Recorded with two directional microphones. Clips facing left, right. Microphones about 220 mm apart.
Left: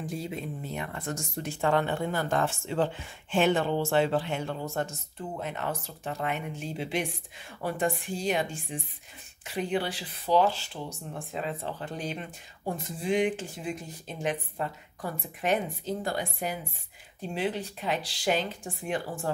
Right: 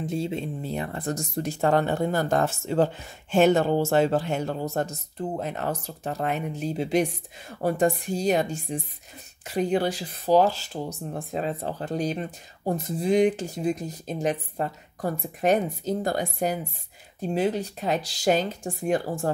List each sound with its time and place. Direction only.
0.0 s speech: 25° right (ahead or behind); by 19.3 s 40° right (ahead or behind)